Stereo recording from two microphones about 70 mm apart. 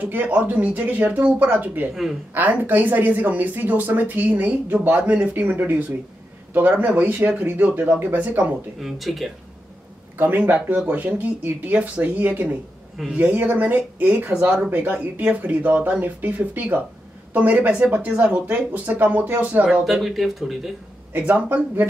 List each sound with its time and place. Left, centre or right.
0.0 s a woman's voice: right
8.8 s speech: centre
10.1 s a woman's voice: right
19.8 s speech: centre
21.1 s a woman's voice: right